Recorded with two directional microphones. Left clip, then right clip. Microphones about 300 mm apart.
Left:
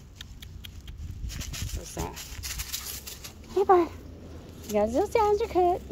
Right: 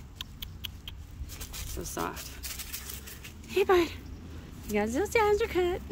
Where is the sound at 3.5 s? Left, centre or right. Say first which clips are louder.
Left 3 dB; centre.